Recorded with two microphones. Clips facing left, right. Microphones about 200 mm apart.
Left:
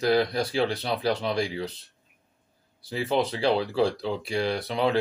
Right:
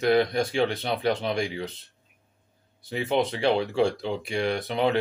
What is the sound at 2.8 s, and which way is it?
Speech, 25° right (ahead or behind).